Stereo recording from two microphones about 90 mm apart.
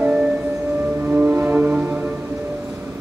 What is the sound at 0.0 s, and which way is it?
Music, 10° right (ahead or behind).